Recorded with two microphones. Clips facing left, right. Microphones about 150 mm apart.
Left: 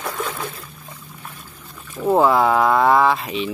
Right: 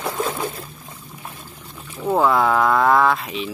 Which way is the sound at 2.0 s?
10° left (ahead or behind).